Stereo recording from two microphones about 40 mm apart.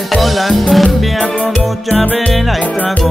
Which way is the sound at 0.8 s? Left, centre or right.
Left.